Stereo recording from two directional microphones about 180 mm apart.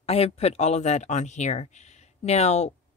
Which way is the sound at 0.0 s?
35° left (ahead or behind).